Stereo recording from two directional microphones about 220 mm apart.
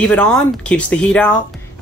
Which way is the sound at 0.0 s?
5° left (ahead or behind).